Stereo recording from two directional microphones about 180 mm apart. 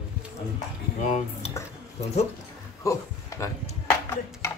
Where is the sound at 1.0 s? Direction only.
35° left (ahead or behind).